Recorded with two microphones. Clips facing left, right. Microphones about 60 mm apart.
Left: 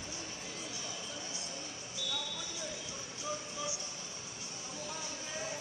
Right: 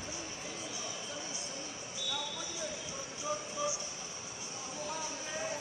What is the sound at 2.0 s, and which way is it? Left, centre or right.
Basketball bounce, centre.